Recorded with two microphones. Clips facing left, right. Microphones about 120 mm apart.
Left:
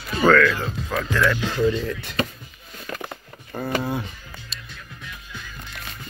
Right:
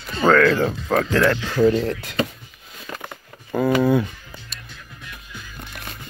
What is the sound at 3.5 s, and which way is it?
Speech, 90° right.